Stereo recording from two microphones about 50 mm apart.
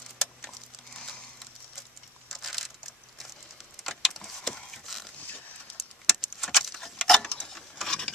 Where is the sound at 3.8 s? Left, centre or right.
Centre.